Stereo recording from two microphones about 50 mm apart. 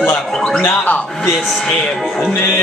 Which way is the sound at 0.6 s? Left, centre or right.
Left.